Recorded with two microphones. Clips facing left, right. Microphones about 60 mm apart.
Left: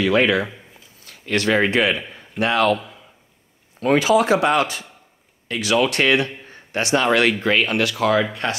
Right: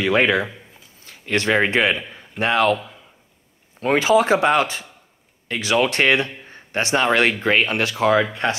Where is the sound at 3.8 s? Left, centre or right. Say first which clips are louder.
Even; right.